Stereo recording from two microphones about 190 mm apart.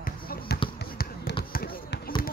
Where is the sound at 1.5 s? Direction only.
50° left (ahead or behind).